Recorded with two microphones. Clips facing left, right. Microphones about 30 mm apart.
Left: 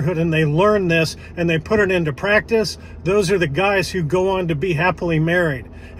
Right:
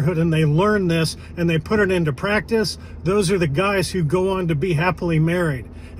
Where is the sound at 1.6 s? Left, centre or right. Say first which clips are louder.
Left 1 dB; right.